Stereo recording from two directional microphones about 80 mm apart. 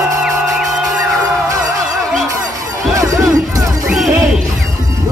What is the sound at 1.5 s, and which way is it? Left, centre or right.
Music, right.